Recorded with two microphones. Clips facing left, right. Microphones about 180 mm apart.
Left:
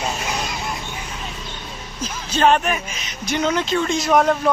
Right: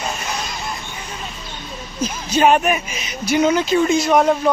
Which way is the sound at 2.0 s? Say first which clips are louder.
Right 2 dB; 10° right (ahead or behind).